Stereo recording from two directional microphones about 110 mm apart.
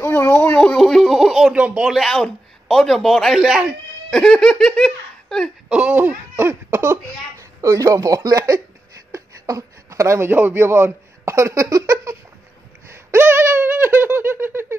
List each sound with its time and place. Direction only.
0.0 s a sound: 20° left (ahead or behind); by 4.2 s 5° right (ahead or behind)
4.2 s speech: 5° left (ahead or behind)
5.7 s speech: 10° right (ahead or behind); by 12.2 s 25° right (ahead or behind)
13.1 s giggle: 15° right (ahead or behind)